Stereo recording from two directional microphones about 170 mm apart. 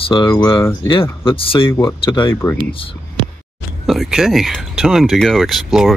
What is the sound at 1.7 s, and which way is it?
Speech, 15° left (ahead or behind).